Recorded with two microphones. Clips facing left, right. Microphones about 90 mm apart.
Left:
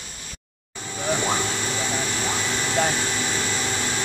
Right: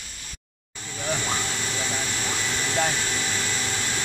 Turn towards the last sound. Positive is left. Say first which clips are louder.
# left 3 dB
turn(degrees=25)  # may be behind; listen again after turning